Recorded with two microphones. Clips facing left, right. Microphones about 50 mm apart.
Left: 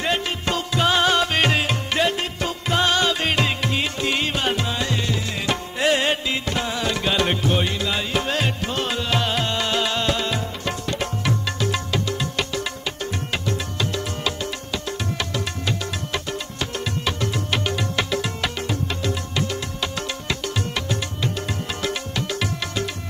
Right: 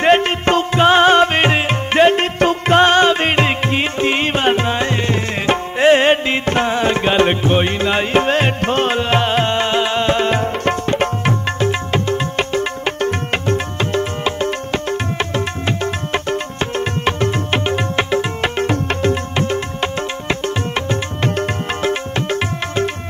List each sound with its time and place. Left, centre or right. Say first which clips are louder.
0.0 s music: right 11 dB; right